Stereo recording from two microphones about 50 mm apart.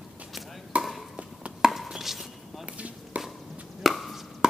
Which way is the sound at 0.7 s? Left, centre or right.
Right.